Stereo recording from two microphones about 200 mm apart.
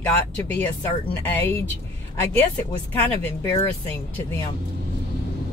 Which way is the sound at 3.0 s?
10° left (ahead or behind).